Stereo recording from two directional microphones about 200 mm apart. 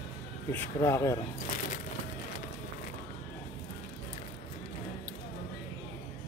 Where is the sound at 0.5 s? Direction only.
15° left (ahead or behind).